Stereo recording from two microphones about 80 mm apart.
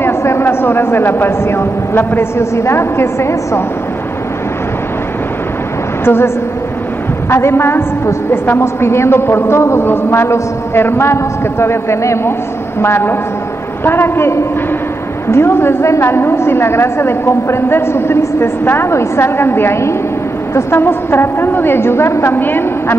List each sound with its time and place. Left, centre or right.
0.0 s a woman's voice: left
6.0 s a woman's voice: left